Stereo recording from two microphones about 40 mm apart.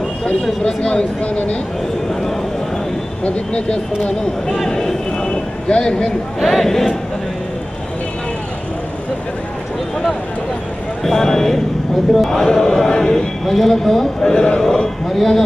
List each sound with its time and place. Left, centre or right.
0.7 s speech: left
3.3 s speech: left
4.0 s speech: centre
4.6 s speech: centre
5.3 s a sound: left
6.4 s a man's voice: centre
11.1 s a man's voice: centre
14.2 s a man's voice: centre